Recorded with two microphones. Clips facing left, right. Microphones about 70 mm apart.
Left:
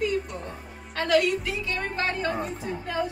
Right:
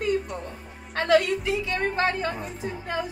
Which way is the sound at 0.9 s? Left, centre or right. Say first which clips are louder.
Right 2 dB; right.